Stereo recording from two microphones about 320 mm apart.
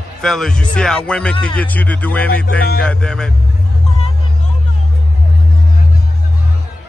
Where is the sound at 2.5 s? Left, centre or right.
Left.